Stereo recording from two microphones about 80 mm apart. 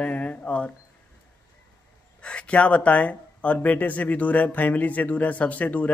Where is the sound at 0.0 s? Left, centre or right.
Centre.